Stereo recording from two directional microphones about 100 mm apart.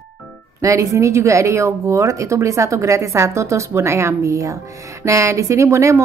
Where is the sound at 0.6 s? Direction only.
30° right (ahead or behind).